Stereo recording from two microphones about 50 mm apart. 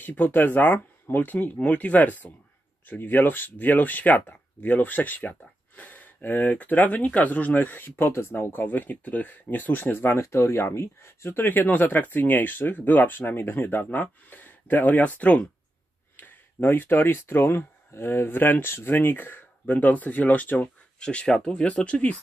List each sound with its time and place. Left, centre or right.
0.0 s speech: left
10.1 s speech: left
21.0 s speech: left